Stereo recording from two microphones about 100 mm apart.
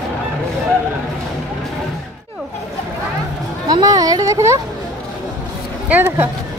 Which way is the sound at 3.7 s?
40° right (ahead or behind).